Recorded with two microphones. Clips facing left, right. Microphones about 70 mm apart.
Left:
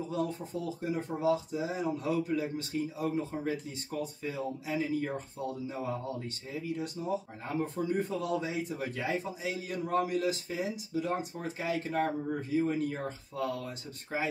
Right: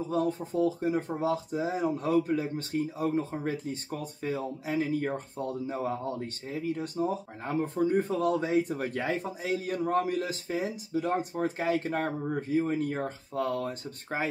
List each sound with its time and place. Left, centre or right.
0.1 s speech: right